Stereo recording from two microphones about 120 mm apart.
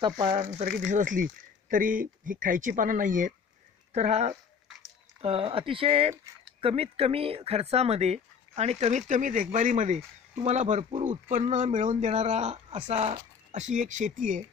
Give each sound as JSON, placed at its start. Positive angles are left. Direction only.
{"t": 0.0, "sound": "speech", "side_deg": -40}
{"t": 0.4, "sound": "speech", "side_deg": -80}
{"t": 2.4, "sound": "speech", "side_deg": -90}
{"t": 3.9, "sound": "speech", "side_deg": -70}
{"t": 5.2, "sound": "speech", "side_deg": -50}
{"t": 10.3, "sound": "speech", "side_deg": -65}